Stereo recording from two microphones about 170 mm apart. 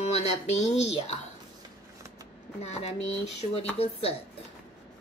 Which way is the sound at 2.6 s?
40° left (ahead or behind).